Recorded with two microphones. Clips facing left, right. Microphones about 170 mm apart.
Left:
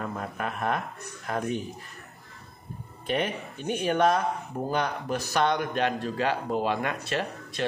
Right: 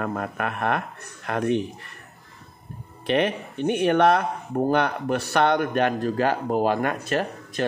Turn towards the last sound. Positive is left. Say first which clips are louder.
# right 4 dB
turn(degrees=-45)  # may be behind; listen again after turning